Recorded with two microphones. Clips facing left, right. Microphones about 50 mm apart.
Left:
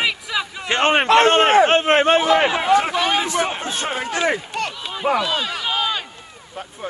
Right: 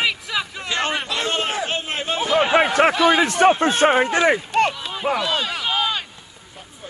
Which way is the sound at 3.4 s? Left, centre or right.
Right.